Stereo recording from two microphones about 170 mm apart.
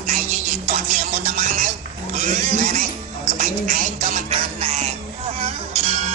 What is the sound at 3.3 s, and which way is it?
Music, 45° right (ahead or behind).